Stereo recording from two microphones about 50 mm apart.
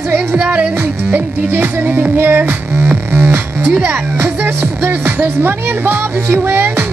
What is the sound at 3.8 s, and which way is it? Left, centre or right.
Speech, right.